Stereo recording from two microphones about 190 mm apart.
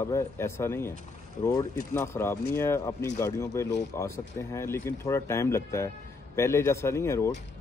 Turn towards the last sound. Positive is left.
turn(degrees=15)  # may be behind; listen again after turning